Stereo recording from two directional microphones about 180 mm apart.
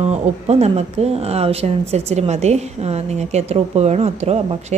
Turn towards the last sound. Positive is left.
turn(degrees=-35)  # may be behind; listen again after turning